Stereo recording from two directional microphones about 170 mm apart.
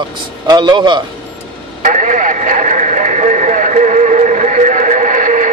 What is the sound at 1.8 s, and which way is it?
Radio, 50° right (ahead or behind).